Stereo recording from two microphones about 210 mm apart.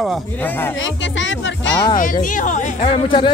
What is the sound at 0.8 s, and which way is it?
Speech, 60° left (ahead or behind).